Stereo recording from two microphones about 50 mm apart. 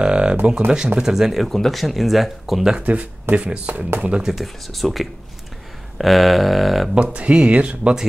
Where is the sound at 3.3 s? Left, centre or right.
Right.